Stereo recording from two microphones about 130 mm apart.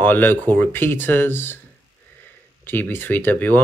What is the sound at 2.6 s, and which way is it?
Speech, 15° left (ahead or behind).